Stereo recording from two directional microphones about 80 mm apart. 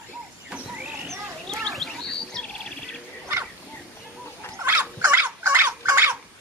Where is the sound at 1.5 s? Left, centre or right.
Centre.